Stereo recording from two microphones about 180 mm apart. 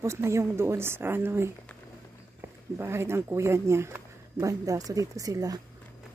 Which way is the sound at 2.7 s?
15° right (ahead or behind).